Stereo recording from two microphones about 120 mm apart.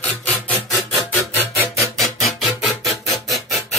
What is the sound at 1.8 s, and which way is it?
Music, centre (ahead or behind).